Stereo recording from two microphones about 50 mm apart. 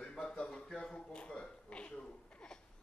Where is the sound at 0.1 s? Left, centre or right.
Centre.